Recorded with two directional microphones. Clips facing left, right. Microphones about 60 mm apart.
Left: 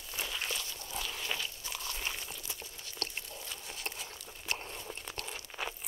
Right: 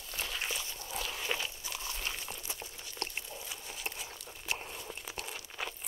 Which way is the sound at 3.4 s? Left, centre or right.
Centre.